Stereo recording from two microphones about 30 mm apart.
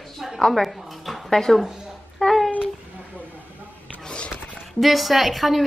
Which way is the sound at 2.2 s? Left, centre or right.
Left.